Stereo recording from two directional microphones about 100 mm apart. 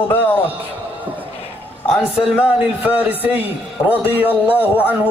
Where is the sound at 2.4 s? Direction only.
10° right (ahead or behind).